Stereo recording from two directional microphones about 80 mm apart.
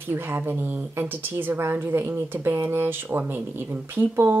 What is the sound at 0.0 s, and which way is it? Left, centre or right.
Speech, right.